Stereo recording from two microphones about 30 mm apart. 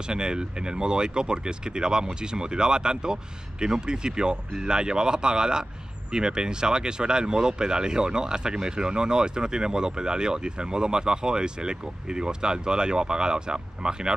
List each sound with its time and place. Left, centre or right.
0.1 s speech: right